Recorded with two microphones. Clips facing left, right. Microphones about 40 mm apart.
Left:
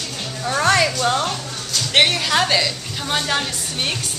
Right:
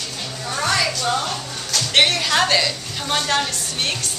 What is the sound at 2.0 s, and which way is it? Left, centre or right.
A woman's voice, centre.